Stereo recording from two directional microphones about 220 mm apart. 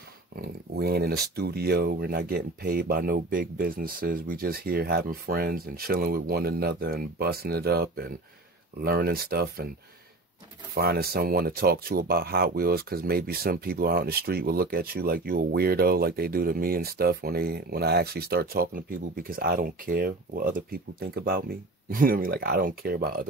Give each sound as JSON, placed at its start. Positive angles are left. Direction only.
{"t": 0.4, "sound": "speech", "side_deg": -45}
{"t": 10.7, "sound": "speech", "side_deg": -45}